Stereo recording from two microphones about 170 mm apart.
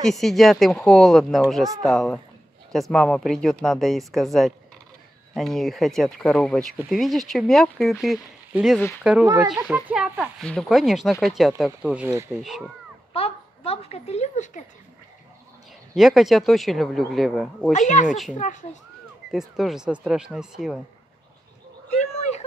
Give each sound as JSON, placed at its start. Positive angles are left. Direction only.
{"t": 0.0, "sound": "speech", "side_deg": 0}
{"t": 13.1, "sound": "a child's voice", "side_deg": 35}
{"t": 15.9, "sound": "speech", "side_deg": 0}
{"t": 17.7, "sound": "speech", "side_deg": 45}
{"t": 19.3, "sound": "speech", "side_deg": 0}
{"t": 22.0, "sound": "a sound", "side_deg": 40}